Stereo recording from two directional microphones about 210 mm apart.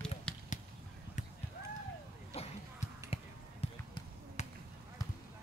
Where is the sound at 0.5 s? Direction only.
35° left (ahead or behind).